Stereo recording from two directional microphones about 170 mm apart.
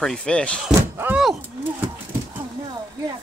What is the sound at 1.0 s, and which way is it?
Speech, 5° right (ahead or behind).